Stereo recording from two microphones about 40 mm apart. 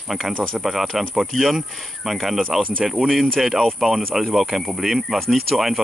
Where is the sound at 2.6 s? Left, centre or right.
Right.